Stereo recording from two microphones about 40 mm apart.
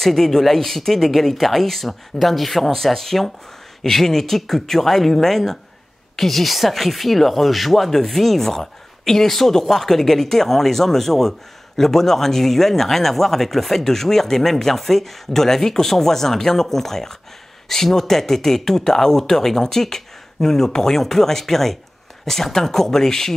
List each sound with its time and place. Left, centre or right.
0.0 s speech: centre